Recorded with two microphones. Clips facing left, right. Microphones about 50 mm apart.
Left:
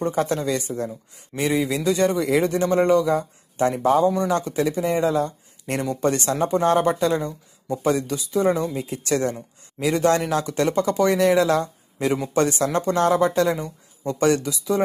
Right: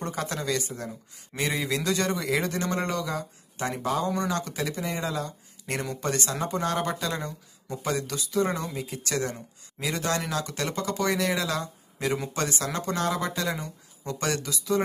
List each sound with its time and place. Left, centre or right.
0.0 s speech: left
0.8 s speech: centre
3.1 s speech: left
4.0 s speech: centre
4.3 s speech: left
4.8 s speech: left
7.2 s speech: centre